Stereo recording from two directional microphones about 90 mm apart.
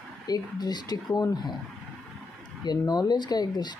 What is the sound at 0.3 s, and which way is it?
Speech, 50° left (ahead or behind).